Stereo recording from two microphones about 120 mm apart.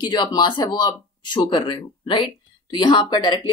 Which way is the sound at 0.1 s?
35° left (ahead or behind).